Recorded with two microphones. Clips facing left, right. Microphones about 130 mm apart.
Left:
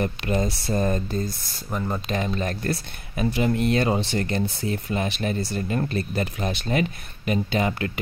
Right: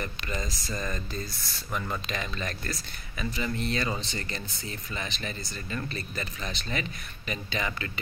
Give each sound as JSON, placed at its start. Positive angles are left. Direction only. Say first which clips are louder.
{"t": 0.0, "sound": "speech", "louder": "left 10 dB", "side_deg": 60}
{"t": 1.7, "sound": "speech", "louder": "left 5 dB", "side_deg": 30}
{"t": 2.0, "sound": "speech", "louder": "left 8 dB", "side_deg": 50}
{"t": 5.6, "sound": "speech", "louder": "left 9 dB", "side_deg": 45}